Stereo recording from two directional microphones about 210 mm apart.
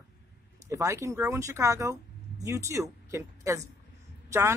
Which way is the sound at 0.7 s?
15° right (ahead or behind).